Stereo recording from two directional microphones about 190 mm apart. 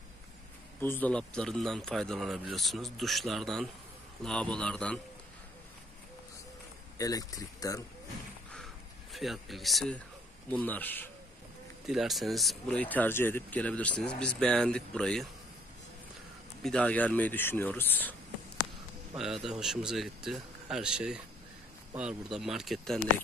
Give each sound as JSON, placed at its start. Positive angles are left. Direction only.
{"t": 0.7, "sound": "speech", "side_deg": 10}
{"t": 7.0, "sound": "speech", "side_deg": 20}
{"t": 9.1, "sound": "speech", "side_deg": 0}
{"t": 11.9, "sound": "speech", "side_deg": 0}
{"t": 16.6, "sound": "speech", "side_deg": 5}
{"t": 19.1, "sound": "speech", "side_deg": 0}